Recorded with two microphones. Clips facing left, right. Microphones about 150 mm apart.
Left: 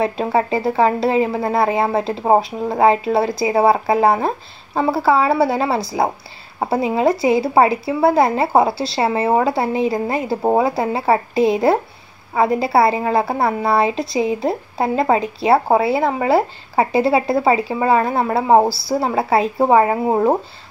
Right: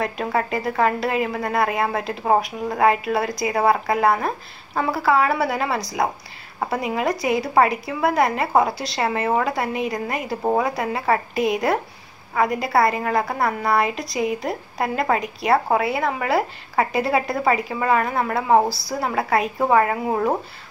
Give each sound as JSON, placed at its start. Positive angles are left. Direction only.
{"t": 0.0, "sound": "a woman's voice", "side_deg": 25}